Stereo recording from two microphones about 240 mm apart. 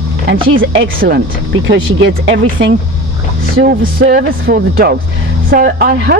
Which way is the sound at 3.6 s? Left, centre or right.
Right.